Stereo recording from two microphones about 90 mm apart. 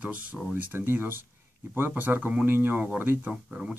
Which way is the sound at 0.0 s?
15° right (ahead or behind).